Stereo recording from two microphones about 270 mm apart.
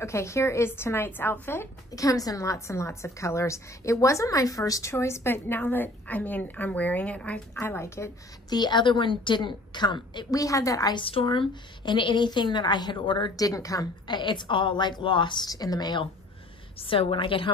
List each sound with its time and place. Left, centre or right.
0.0 s a woman's voice: centre